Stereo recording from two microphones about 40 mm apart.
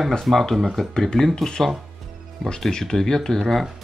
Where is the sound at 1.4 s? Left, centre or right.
Centre.